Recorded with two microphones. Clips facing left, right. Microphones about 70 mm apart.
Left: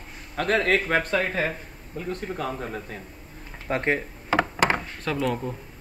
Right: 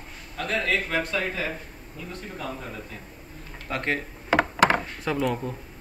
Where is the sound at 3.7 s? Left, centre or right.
Left.